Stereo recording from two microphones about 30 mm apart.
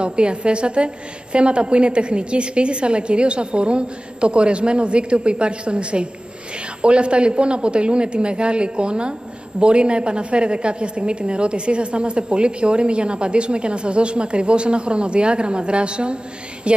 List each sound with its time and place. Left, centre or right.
0.0 s a woman's voice: right